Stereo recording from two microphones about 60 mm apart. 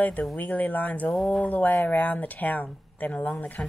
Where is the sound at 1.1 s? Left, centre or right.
Centre.